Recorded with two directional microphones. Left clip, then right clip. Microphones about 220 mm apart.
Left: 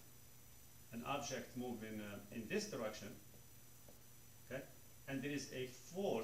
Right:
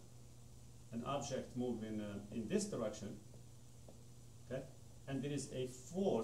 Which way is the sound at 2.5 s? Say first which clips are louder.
Right 2 dB; 10° right (ahead or behind).